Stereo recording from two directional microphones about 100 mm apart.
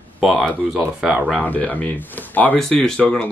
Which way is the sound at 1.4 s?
15° left (ahead or behind).